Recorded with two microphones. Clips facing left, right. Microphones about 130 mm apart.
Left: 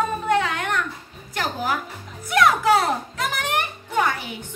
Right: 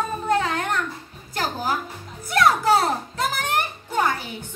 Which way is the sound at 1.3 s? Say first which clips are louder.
Even; 35° right (ahead or behind).